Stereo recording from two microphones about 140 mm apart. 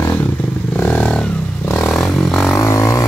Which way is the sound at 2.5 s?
20° left (ahead or behind).